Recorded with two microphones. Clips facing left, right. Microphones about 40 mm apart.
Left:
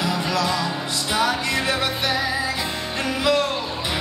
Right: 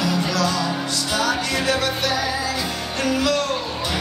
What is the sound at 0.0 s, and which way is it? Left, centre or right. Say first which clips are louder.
Music: right 1 dB; centre.